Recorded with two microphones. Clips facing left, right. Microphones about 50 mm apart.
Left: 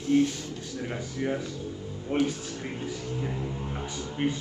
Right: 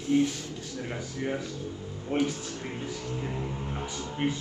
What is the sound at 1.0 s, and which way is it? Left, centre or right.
Speech, left.